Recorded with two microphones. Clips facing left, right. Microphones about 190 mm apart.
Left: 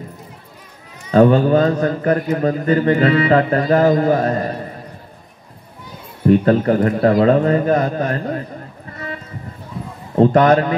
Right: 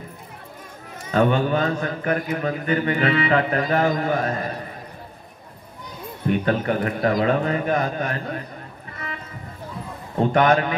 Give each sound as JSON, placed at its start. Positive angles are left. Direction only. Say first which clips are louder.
{"t": 1.1, "sound": "a man's voice", "louder": "left 8 dB", "side_deg": 40}
{"t": 6.2, "sound": "a man's voice", "louder": "left 8 dB", "side_deg": 35}
{"t": 10.1, "sound": "a man's voice", "louder": "left 6 dB", "side_deg": 35}